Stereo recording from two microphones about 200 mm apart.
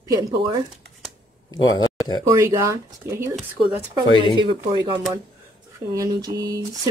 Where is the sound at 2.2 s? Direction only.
15° right (ahead or behind).